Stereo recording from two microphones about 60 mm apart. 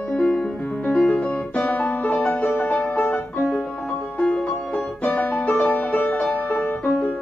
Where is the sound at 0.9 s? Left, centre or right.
Left.